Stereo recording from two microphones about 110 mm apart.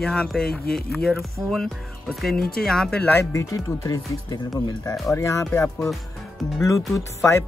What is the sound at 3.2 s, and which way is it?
Speech, 30° left (ahead or behind).